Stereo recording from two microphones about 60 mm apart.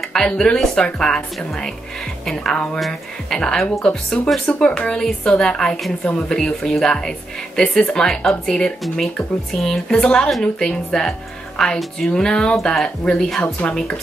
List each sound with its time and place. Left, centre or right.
0.0 s speech: centre